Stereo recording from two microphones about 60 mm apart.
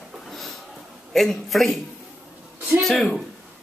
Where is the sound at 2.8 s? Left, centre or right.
Centre.